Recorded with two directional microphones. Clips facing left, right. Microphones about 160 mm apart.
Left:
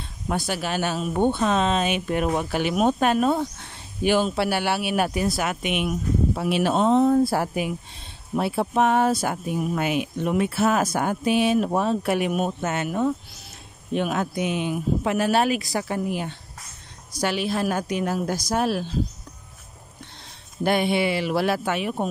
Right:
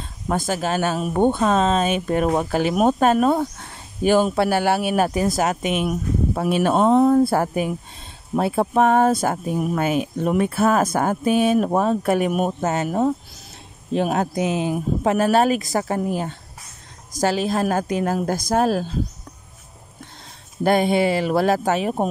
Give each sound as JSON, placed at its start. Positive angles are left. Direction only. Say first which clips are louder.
{"t": 0.3, "sound": "speech", "louder": "right 4 dB", "side_deg": -45}
{"t": 12.6, "sound": "speech", "louder": "right 5 dB", "side_deg": -35}
{"t": 20.6, "sound": "speech", "louder": "right 4 dB", "side_deg": -45}